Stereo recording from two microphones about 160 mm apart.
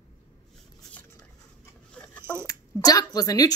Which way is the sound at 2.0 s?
10° left (ahead or behind).